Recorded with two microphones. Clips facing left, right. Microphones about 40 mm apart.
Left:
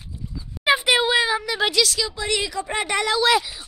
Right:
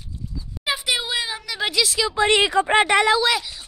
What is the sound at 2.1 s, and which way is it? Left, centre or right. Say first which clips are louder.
Speech: right 8 dB; right.